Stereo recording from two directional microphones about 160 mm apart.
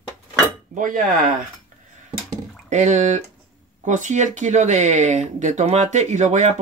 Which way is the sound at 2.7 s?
50° right (ahead or behind).